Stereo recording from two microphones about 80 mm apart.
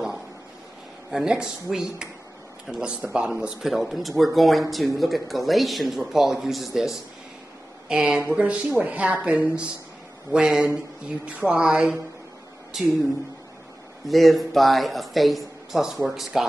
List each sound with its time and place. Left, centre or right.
1.1 s speech: centre
14.0 s speech: centre